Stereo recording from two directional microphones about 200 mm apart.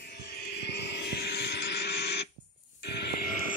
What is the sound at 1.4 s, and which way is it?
Printer, 60° left (ahead or behind).